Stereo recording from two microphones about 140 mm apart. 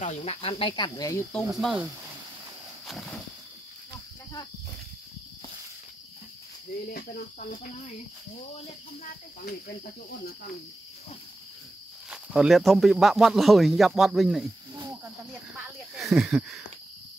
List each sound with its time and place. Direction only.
0.0 s cricket: 50° left (ahead or behind); by 1.2 s 25° left (ahead or behind)
1.6 s speech: 5° right (ahead or behind)
2.9 s a sound: centre (ahead or behind)
6.9 s speech: 90° left
9.0 s speech: 90° left
12.1 s speech: 5° right (ahead or behind)
15.5 s speech: 5° right (ahead or behind)